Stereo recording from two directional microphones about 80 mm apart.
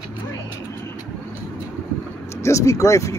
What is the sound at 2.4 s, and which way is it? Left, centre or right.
Speech, left.